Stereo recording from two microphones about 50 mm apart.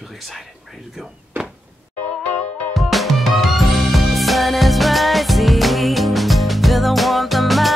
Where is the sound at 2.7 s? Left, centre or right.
Centre.